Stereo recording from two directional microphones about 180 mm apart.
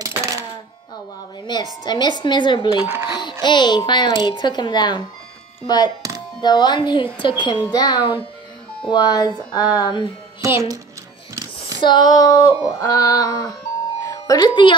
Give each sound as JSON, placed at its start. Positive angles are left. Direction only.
{"t": 0.0, "sound": "music", "side_deg": -15}
{"t": 1.4, "sound": "a child's voice", "side_deg": 25}
{"t": 10.4, "sound": "speech", "side_deg": -15}
{"t": 11.8, "sound": "a child's voice", "side_deg": 25}